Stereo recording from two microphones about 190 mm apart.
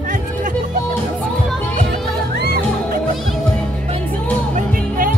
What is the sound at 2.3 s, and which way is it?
Music, 60° right (ahead or behind).